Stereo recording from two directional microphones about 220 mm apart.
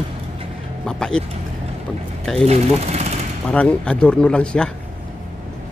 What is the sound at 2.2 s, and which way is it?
Speech, 5° left (ahead or behind).